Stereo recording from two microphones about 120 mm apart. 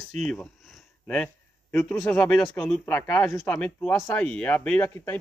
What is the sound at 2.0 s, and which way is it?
Speech, 15° left (ahead or behind).